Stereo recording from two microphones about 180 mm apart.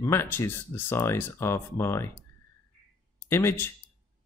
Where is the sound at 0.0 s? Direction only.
15° left (ahead or behind).